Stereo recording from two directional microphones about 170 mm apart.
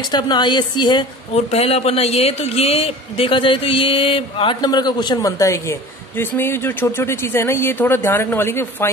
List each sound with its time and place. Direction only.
0.1 s a man's voice: 25° left (ahead or behind)
1.3 s a man's voice: 40° left (ahead or behind); by 8.9 s 15° left (ahead or behind)